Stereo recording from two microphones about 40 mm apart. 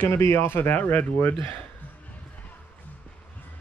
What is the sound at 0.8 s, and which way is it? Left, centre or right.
Speech, left.